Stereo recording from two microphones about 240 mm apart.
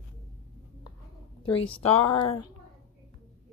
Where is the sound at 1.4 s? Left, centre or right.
Left.